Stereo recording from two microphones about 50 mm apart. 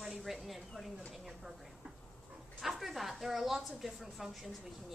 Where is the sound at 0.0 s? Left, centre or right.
Centre.